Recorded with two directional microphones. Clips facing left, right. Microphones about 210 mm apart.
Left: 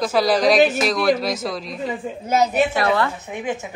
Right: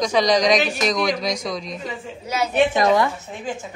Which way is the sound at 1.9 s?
55° left (ahead or behind).